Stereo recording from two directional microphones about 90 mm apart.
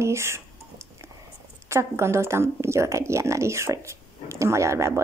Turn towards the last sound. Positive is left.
turn(degrees=-35)  # may be behind; listen again after turning